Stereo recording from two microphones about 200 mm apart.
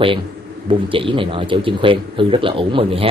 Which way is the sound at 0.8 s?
25° right (ahead or behind).